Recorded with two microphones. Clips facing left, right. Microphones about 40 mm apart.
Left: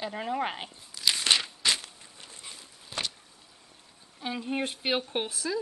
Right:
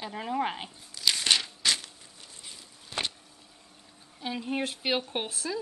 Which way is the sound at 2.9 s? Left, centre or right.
Centre.